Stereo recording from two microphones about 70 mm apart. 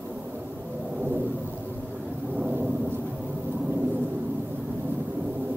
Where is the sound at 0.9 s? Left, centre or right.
Right.